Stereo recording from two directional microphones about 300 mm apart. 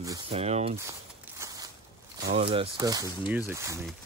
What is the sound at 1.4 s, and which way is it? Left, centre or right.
Crackle, centre.